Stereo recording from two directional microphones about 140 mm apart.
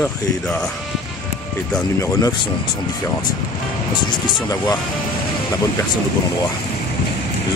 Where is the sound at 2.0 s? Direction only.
30° left (ahead or behind).